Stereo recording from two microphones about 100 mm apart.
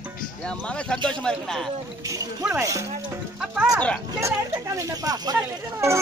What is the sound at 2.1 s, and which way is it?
Speech, 35° right (ahead or behind).